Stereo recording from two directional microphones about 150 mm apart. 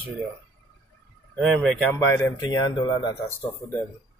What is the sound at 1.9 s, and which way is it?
Speech, 20° left (ahead or behind).